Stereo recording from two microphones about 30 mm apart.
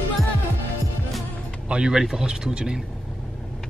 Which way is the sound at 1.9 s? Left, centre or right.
Centre.